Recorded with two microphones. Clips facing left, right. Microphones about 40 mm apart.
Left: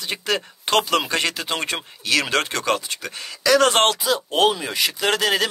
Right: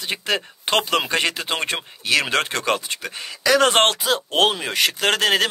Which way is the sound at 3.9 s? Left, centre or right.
Right.